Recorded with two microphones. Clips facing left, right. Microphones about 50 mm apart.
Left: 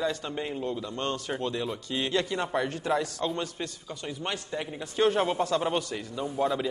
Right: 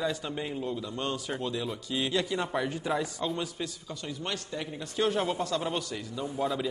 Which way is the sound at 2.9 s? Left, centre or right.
Centre.